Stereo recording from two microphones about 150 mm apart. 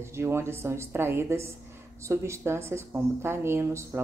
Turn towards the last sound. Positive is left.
turn(degrees=-15)  # may be behind; listen again after turning